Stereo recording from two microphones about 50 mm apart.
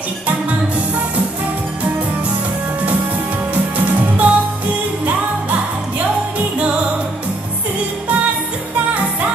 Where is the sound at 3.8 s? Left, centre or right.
Right.